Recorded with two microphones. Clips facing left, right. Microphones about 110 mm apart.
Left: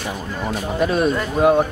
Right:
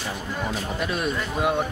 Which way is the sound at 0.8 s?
35° left (ahead or behind).